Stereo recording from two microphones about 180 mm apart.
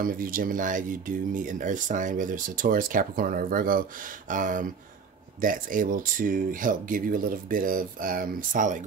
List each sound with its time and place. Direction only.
0.0 s speech: 50° right (ahead or behind)